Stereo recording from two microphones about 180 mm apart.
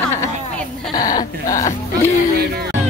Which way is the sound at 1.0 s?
20° left (ahead or behind).